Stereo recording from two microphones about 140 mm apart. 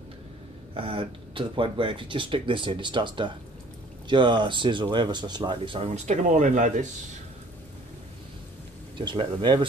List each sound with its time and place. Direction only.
0.7 s speech: 40° right (ahead or behind)
6.0 s speech: 60° right (ahead or behind)
8.9 s speech: 40° right (ahead or behind)